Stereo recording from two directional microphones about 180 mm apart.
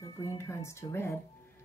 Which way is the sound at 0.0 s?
15° left (ahead or behind).